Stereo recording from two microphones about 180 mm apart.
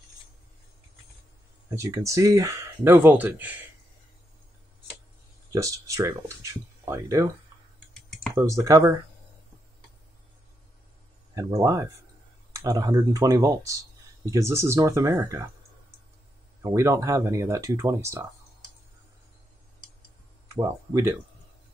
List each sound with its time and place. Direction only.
1.8 s speech: 15° right (ahead or behind)
5.5 s speech: 20° right (ahead or behind)
8.4 s speech: 15° right (ahead or behind)
11.3 s speech: 15° right (ahead or behind)
16.6 s speech: 15° right (ahead or behind)
20.5 s speech: 15° right (ahead or behind)